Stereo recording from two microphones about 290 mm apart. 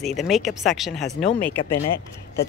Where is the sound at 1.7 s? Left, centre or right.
Left.